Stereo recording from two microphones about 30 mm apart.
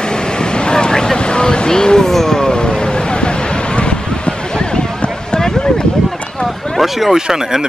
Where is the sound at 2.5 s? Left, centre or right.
Left.